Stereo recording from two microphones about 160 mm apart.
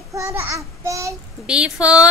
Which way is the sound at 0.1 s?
20° right (ahead or behind).